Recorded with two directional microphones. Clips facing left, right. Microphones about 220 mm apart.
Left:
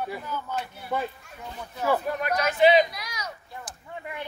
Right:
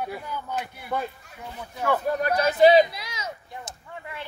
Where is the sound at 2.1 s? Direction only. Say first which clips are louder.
Right 3 dB; 35° right (ahead or behind).